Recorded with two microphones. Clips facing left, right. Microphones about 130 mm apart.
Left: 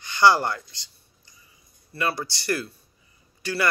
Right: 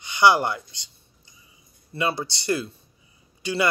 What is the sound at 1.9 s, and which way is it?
Speech, 20° right (ahead or behind).